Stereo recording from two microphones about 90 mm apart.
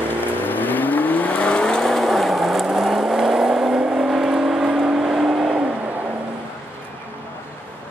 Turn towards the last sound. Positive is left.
turn(degrees=-10)  # may be behind; listen again after turning